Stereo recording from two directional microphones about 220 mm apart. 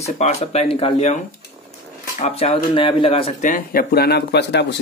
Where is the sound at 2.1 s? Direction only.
25° left (ahead or behind).